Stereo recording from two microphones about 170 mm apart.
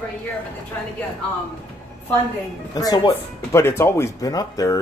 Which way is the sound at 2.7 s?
20° left (ahead or behind).